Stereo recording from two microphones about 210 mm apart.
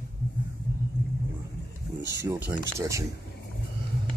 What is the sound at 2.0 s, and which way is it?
Speech, 15° right (ahead or behind).